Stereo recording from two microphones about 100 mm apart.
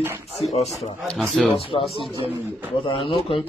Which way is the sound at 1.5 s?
75° left (ahead or behind).